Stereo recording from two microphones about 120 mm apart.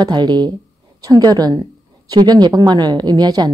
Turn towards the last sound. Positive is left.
turn(degrees=-35)  # may be behind; listen again after turning